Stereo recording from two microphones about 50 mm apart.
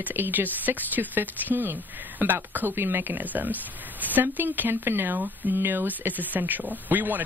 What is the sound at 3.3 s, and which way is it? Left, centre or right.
Speech, right.